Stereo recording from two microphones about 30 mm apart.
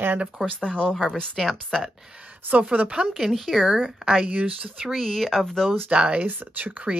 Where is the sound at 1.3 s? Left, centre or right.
Centre.